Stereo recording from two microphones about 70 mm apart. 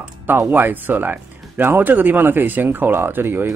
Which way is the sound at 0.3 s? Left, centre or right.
Right.